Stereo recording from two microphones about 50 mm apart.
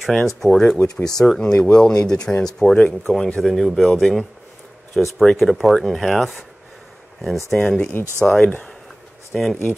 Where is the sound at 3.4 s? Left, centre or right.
Centre.